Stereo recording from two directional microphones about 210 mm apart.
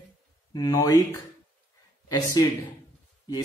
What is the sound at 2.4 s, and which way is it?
Speech, 20° left (ahead or behind).